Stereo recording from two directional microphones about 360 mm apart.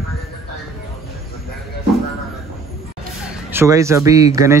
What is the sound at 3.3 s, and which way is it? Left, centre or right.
A man's voice, centre.